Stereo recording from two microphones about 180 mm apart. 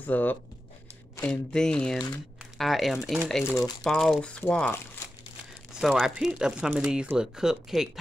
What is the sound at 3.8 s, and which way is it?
Speech, centre (ahead or behind).